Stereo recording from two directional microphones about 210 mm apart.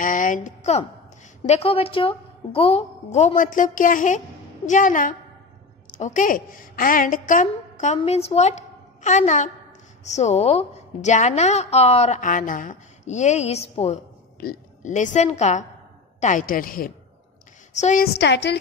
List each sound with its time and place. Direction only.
0.0 s a woman's voice: 40° left (ahead or behind)
18.0 s a woman's voice: 50° left (ahead or behind)